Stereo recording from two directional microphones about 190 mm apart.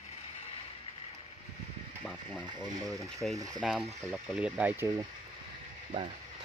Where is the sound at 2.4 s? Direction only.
20° right (ahead or behind).